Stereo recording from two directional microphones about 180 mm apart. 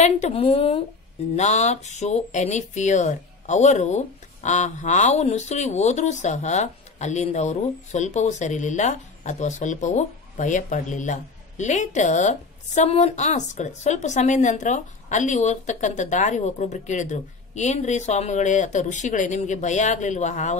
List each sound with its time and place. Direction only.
0.0 s speech: 35° left (ahead or behind)